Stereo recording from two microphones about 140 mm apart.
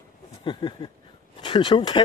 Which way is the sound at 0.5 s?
35° left (ahead or behind).